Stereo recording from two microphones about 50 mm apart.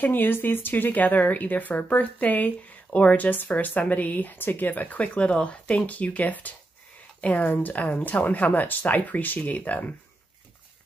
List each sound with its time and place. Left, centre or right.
0.0 s speech: left